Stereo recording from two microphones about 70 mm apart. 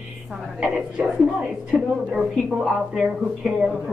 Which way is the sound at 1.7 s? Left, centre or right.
Centre.